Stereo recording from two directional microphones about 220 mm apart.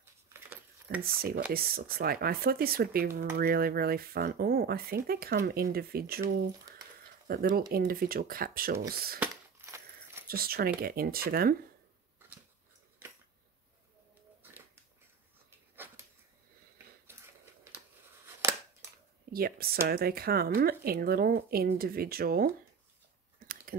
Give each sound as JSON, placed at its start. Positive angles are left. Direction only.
{"t": 1.0, "sound": "speech", "side_deg": -45}
{"t": 7.2, "sound": "speech", "side_deg": -45}
{"t": 9.2, "sound": "crushing", "side_deg": -10}
{"t": 10.2, "sound": "speech", "side_deg": -45}
{"t": 15.7, "sound": "a sound", "side_deg": -10}
{"t": 18.2, "sound": "scissors", "side_deg": -10}
{"t": 19.3, "sound": "speech", "side_deg": -45}
{"t": 23.4, "sound": "a sound", "side_deg": -40}